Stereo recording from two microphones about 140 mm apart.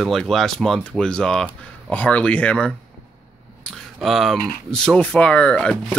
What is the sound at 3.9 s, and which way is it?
Speech, centre (ahead or behind).